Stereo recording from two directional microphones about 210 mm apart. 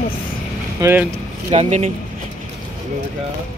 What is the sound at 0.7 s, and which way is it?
Speech, 10° right (ahead or behind).